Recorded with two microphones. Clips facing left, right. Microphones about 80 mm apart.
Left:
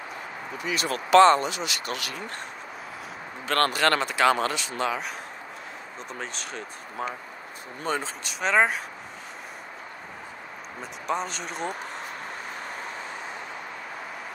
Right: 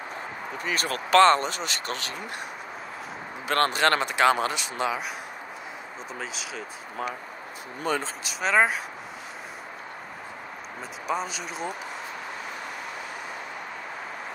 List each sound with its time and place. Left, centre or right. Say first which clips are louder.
0.6 s speech: left 1 dB; right
3.4 s speech: even; right
6.1 s speech: even; centre
7.0 s speech: even; left
8.0 s speech: even; centre
11.1 s speech: even; centre